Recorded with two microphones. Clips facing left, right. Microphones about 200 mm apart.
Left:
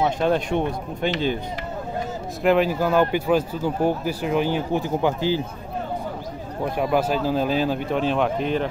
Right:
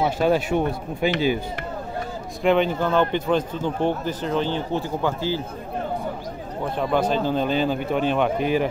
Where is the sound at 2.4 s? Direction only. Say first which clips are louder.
Left 1 dB; 5° left (ahead or behind).